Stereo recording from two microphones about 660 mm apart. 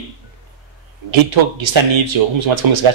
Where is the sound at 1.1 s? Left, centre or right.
Right.